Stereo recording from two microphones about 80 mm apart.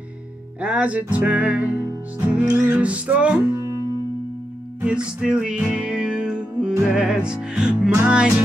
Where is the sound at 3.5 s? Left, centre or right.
Right.